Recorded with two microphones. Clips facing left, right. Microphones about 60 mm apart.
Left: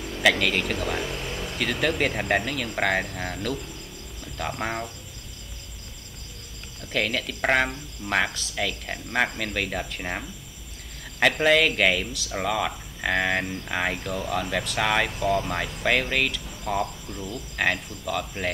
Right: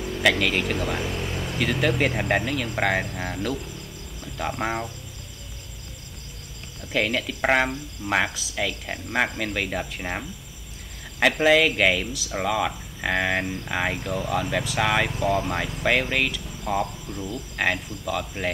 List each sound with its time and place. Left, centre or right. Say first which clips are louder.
0.2 s speech: even; centre
4.2 s cricket: right 2 dB; centre
6.9 s speech: right 2 dB; centre